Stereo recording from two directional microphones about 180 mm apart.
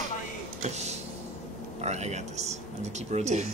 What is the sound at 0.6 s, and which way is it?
Power windows, 40° right (ahead or behind).